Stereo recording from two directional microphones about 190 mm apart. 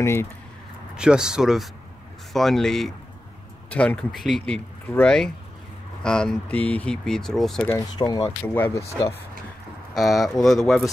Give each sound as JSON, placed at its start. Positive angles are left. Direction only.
{"t": 0.0, "sound": "speech", "side_deg": 15}
{"t": 0.9, "sound": "speech", "side_deg": -5}
{"t": 7.7, "sound": "speech", "side_deg": 20}
{"t": 9.9, "sound": "speech", "side_deg": 0}